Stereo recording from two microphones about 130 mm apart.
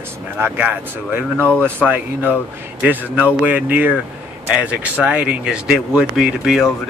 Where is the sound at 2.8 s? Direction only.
10° right (ahead or behind).